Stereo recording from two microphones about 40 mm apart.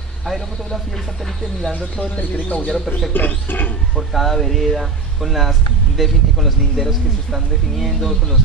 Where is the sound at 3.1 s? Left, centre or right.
Left.